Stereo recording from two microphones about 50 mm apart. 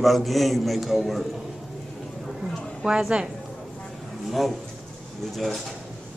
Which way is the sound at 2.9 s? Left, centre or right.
Centre.